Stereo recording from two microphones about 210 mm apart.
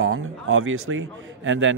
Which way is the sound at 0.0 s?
75° right (ahead or behind).